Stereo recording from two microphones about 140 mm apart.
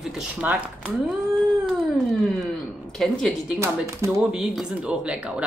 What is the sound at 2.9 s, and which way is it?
Speech, 5° left (ahead or behind).